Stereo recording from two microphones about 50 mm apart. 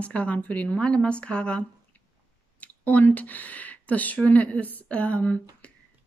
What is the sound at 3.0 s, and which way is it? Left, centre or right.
A woman's voice, left.